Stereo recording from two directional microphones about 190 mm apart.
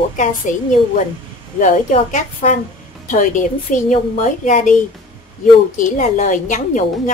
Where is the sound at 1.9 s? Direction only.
40° left (ahead or behind).